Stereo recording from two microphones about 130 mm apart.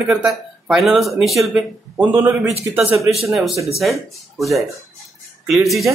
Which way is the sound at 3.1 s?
Centre (ahead or behind).